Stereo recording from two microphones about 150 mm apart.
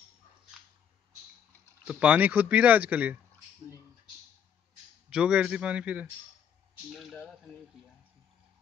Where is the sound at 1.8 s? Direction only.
10° right (ahead or behind).